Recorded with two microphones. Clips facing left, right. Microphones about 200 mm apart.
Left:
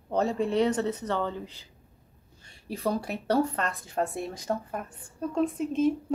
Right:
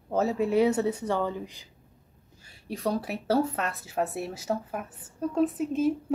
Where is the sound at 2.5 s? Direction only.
Centre (ahead or behind).